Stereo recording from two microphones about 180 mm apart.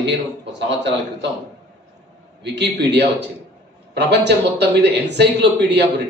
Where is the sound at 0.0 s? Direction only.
75° right (ahead or behind).